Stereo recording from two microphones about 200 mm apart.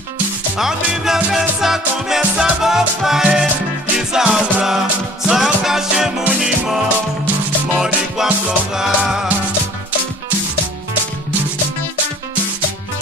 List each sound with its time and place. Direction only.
0.6 s music: centre (ahead or behind)